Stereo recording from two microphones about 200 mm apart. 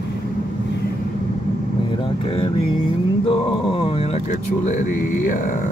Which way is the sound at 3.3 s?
30° left (ahead or behind).